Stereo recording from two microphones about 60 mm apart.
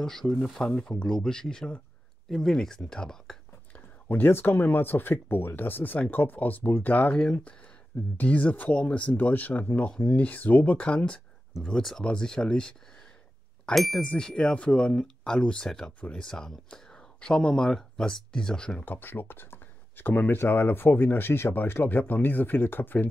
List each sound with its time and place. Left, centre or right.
0.0 s speech: centre
3.7 s speech: left
8.2 s speech: left
11.6 s speech: centre
13.7 s speech: centre
14.0 s speech: centre
18.8 s speech: left